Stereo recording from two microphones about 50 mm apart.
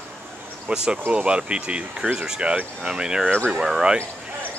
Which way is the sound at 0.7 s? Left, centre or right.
Right.